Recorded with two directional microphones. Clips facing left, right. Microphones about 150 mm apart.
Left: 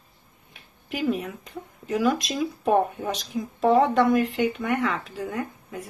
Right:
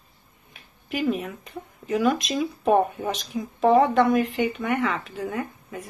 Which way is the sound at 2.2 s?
15° right (ahead or behind).